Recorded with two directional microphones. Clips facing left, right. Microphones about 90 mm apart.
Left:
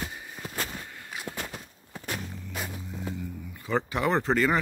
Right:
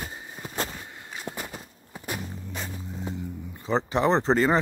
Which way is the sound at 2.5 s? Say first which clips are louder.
Left 1 dB; 5° left (ahead or behind).